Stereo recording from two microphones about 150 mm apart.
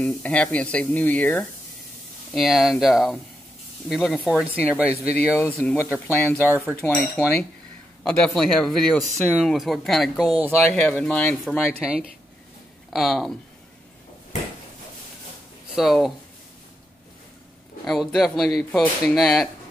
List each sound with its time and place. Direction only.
0.0 s speech: 10° left (ahead or behind)
4.3 s speech: 5° right (ahead or behind)
5.3 s speech: 15° left (ahead or behind); by 10.5 s 5° right (ahead or behind)
10.7 s speech: 5° left (ahead or behind)
15.7 s speech: centre (ahead or behind)
17.8 s speech: centre (ahead or behind)